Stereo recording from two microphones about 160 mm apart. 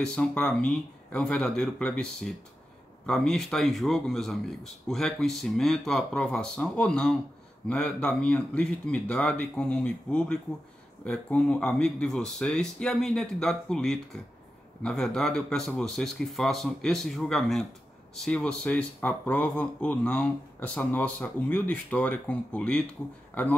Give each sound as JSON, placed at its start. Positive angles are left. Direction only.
{"t": 0.0, "sound": "speech", "side_deg": 5}